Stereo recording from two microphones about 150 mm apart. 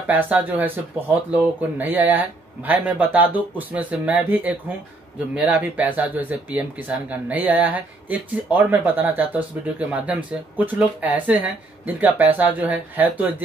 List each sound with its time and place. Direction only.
0.0 s speech: 10° right (ahead or behind)